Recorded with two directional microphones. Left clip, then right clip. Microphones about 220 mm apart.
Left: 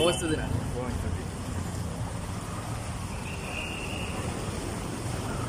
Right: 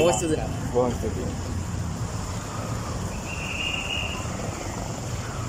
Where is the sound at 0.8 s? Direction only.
25° right (ahead or behind).